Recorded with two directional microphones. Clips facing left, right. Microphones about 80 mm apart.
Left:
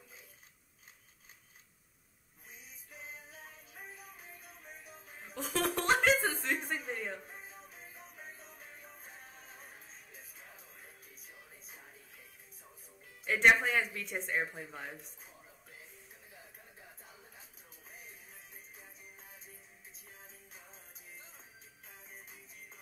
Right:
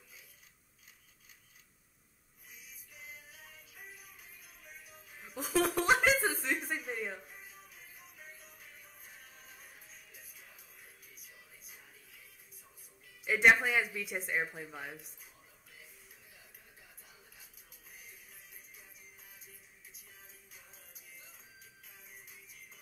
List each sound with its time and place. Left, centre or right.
2.5 s music: left
5.2 s a sound: centre
6.9 s music: centre
7.2 s music: left
13.2 s speech: centre
17.0 s a sound: left
17.9 s music: left
21.8 s music: left